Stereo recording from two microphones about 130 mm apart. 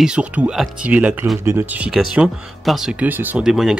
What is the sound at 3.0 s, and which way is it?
Speech, 15° right (ahead or behind).